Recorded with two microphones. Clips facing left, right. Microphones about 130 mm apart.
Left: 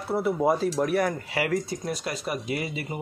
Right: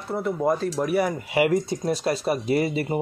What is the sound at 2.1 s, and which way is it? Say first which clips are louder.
Speech: right 8 dB; 35° right (ahead or behind).